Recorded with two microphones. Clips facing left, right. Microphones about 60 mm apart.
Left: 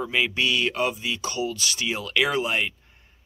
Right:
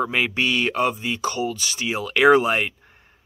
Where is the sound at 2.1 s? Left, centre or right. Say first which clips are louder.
Right 9 dB; right.